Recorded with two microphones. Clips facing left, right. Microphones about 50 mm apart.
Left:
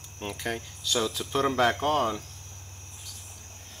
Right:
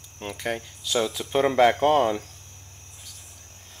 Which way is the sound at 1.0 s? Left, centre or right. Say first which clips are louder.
Right 4 dB; right.